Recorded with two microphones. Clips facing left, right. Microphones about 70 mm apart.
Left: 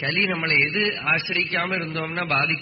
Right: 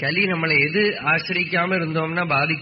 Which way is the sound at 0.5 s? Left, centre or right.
Right.